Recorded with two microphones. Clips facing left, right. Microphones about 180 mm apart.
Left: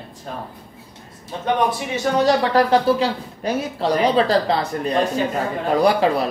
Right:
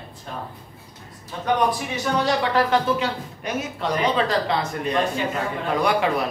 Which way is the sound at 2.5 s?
35° left (ahead or behind).